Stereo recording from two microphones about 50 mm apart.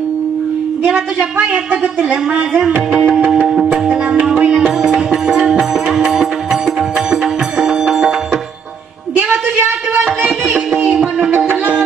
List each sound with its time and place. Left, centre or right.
1.5 s a woman's voice: right
3.6 s music: centre
10.2 s music: right
10.8 s music: centre
11.3 s music: right